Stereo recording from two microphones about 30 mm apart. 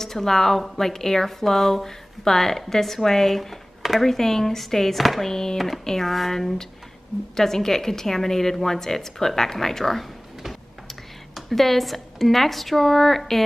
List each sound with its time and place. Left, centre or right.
0.0 s a woman's voice: centre
3.3 s speech: centre
4.0 s a woman's voice: centre
6.0 s speech: centre
6.3 s a woman's voice: centre